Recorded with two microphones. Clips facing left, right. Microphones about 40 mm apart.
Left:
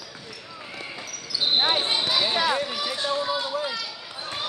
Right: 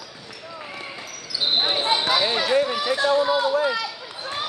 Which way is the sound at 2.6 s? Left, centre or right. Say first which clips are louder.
Right 7 dB; centre.